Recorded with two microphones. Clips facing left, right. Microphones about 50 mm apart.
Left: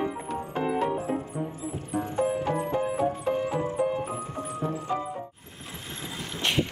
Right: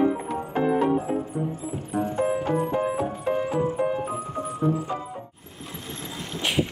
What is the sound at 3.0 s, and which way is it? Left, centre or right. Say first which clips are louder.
Music: right 1 dB; centre.